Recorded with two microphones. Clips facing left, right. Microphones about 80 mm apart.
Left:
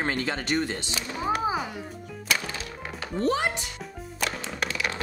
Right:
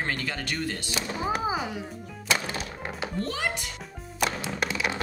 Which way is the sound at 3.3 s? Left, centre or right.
Left.